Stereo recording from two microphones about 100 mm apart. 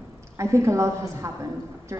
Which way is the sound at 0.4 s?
30° right (ahead or behind).